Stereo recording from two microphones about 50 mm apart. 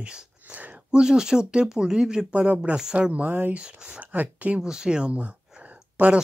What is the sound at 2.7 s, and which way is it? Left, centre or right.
Speech, centre.